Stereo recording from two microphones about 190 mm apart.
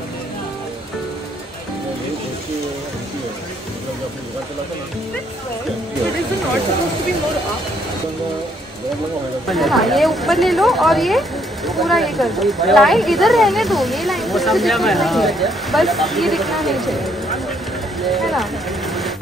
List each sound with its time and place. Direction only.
9.5 s speech: centre (ahead or behind)
18.1 s music: centre (ahead or behind)